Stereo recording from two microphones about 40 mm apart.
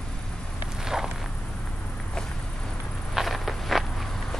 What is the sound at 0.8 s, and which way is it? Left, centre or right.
Walk, centre.